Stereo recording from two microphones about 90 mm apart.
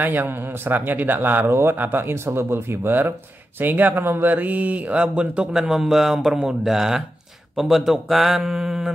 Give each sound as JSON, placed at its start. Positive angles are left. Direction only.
{"t": 0.0, "sound": "a man's voice", "side_deg": -20}